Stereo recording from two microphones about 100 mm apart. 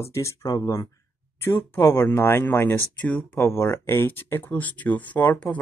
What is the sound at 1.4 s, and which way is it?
Speech, 25° left (ahead or behind).